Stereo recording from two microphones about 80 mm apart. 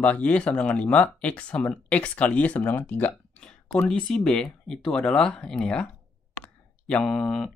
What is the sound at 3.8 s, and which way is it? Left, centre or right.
Speech, centre.